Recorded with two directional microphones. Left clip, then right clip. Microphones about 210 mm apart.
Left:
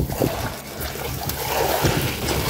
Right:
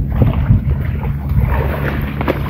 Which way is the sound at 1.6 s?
30° right (ahead or behind).